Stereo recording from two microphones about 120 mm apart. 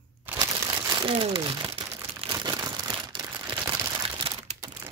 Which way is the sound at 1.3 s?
35° right (ahead or behind).